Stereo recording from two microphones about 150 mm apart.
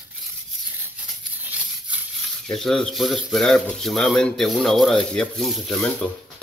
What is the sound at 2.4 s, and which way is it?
Speech, centre (ahead or behind).